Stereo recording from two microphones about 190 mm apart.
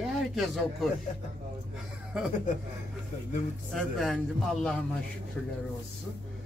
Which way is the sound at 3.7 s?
Centre (ahead or behind).